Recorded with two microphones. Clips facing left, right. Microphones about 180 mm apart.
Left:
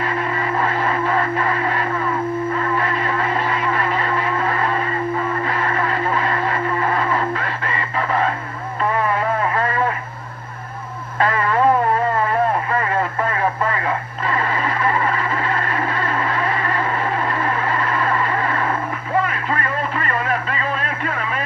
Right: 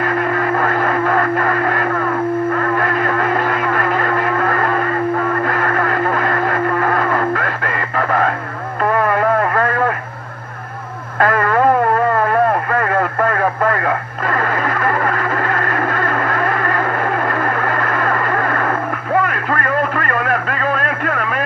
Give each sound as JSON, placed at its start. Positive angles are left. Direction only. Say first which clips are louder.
{"t": 0.0, "sound": "music", "louder": "right 5 dB", "side_deg": -55}
{"t": 2.5, "sound": "a sound", "louder": "right 4 dB", "side_deg": -55}
{"t": 8.8, "sound": "radio", "louder": "right 5 dB", "side_deg": -55}
{"t": 11.1, "sound": "radio", "louder": "right 3 dB", "side_deg": -55}